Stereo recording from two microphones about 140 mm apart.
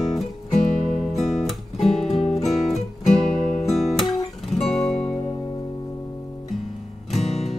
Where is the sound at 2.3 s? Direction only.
50° left (ahead or behind).